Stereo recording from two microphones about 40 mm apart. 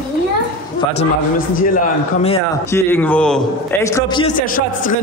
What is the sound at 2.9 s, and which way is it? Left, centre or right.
Speech, left.